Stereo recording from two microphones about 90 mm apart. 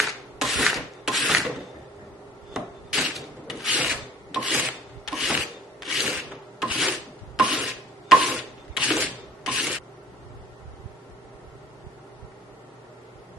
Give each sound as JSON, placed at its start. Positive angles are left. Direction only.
{"t": 0.0, "sound": "rub", "side_deg": 0}
{"t": 2.5, "sound": "rub", "side_deg": 0}
{"t": 3.8, "sound": "filing", "side_deg": -5}
{"t": 6.9, "sound": "filing", "side_deg": -15}
{"t": 7.6, "sound": "a sound", "side_deg": 0}
{"t": 9.4, "sound": "zipper", "side_deg": -5}